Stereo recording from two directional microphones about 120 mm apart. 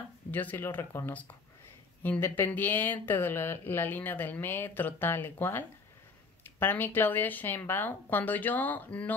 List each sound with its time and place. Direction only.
0.3 s speech: 15° left (ahead or behind)